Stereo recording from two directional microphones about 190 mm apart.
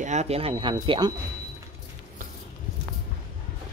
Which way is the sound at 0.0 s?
35° right (ahead or behind).